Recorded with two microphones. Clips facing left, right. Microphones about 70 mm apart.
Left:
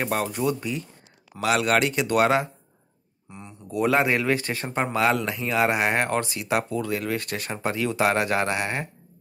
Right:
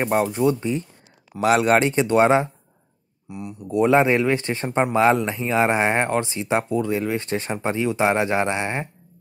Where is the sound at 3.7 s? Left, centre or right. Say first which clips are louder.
Right 5 dB; centre.